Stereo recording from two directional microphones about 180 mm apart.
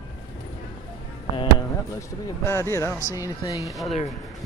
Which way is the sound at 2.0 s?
15° left (ahead or behind).